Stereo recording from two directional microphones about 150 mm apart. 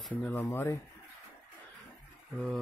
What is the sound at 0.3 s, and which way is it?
Speech, 15° left (ahead or behind).